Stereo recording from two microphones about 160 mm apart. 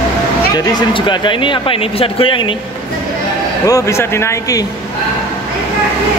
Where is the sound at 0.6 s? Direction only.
30° left (ahead or behind).